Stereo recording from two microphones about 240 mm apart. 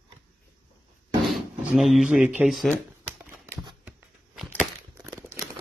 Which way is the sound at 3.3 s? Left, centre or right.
Centre.